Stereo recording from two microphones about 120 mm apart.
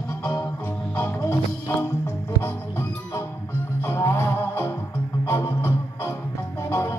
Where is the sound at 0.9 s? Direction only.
20° left (ahead or behind).